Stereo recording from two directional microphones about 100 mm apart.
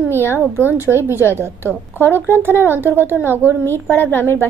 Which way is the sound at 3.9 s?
20° left (ahead or behind).